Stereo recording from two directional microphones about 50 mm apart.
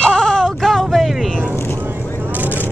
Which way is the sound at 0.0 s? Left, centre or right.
Centre.